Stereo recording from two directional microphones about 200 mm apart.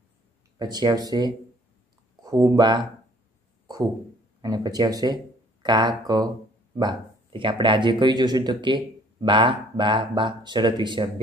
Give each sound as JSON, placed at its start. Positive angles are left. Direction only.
{"t": 0.6, "sound": "speech", "side_deg": -20}
{"t": 4.4, "sound": "speech", "side_deg": -20}